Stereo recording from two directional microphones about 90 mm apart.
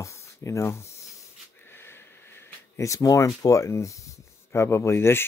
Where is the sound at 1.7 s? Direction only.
25° left (ahead or behind).